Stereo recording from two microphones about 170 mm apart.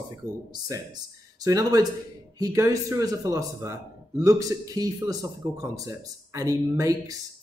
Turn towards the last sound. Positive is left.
turn(degrees=-20)  # may be behind; listen again after turning